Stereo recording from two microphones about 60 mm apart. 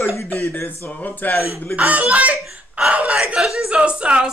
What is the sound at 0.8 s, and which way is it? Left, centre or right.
Speech, left.